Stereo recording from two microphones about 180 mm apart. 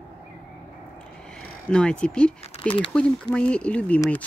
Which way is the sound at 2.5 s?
35° left (ahead or behind).